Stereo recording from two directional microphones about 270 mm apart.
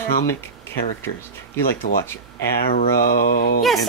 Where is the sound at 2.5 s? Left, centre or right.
Left.